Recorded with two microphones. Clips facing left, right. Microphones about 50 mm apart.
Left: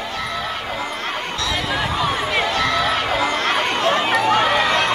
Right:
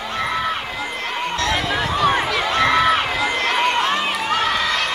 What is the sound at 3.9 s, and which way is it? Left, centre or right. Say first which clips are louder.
Run: left 3 dB; left.